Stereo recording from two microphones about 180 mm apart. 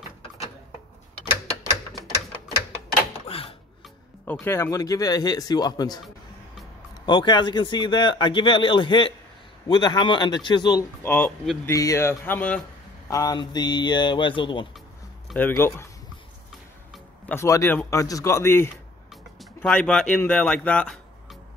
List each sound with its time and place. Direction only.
3.3 s a sound: 30° left (ahead or behind)
4.3 s speech: 10° left (ahead or behind)
7.1 s a man's voice: 25° left (ahead or behind); by 12.6 s 10° left (ahead or behind)
13.1 s speech: 20° left (ahead or behind)
15.3 s a man's voice: 10° left (ahead or behind)
16.9 s speech: 10° left (ahead or behind)